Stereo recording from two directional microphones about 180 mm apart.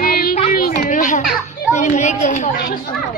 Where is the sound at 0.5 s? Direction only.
50° left (ahead or behind).